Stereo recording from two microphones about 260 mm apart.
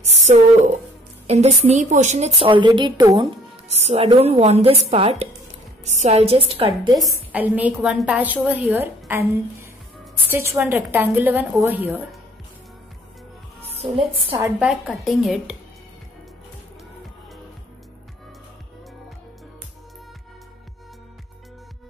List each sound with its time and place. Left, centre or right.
1.2 s a woman's voice: right
7.3 s a woman's voice: centre
13.7 s a woman's voice: right
14.4 s a woman's voice: centre